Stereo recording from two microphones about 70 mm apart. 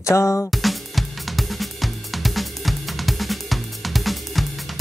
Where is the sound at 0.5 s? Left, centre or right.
Centre.